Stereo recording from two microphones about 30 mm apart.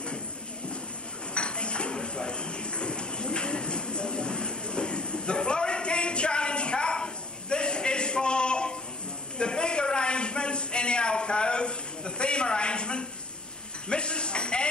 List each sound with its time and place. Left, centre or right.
1.3 s dishes: left
9.4 s a sound: left
13.8 s music: left